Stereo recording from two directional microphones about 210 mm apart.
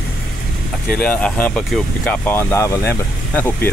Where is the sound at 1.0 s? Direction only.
5° left (ahead or behind).